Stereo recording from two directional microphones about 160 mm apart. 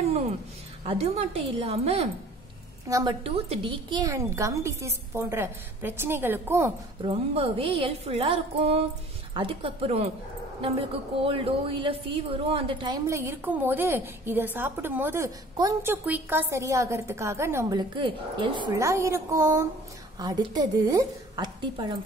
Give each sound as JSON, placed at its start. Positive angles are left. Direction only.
{"t": 0.8, "sound": "a woman's voice", "side_deg": -40}
{"t": 2.9, "sound": "a woman's voice", "side_deg": -25}
{"t": 3.3, "sound": "a woman's voice", "side_deg": -35}
{"t": 7.0, "sound": "a woman's voice", "side_deg": -35}
{"t": 11.2, "sound": "a woman's voice", "side_deg": -35}